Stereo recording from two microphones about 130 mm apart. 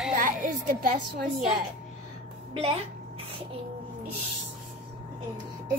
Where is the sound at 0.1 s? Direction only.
85° right.